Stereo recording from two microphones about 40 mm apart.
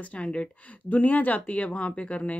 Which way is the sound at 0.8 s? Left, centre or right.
Left.